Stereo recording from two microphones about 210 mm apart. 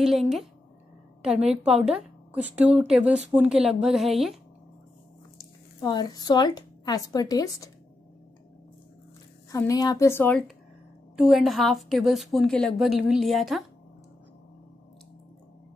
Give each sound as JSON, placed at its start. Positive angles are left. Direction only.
{"t": 0.0, "sound": "a woman's voice", "side_deg": 0}
{"t": 5.4, "sound": "speech", "side_deg": 20}
{"t": 9.5, "sound": "a woman's voice", "side_deg": 15}
{"t": 11.1, "sound": "a woman's voice", "side_deg": 0}